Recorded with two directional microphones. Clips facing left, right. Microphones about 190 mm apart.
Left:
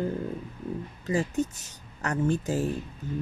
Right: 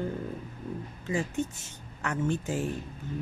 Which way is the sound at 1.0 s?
40° left (ahead or behind).